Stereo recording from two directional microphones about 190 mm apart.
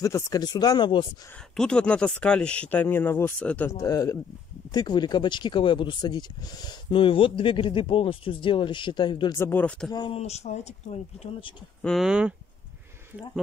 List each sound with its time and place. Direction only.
0.0 s speech: 15° left (ahead or behind)
1.6 s speech: 5° left (ahead or behind)
9.9 s speech: 30° left (ahead or behind)
11.8 s speech: centre (ahead or behind)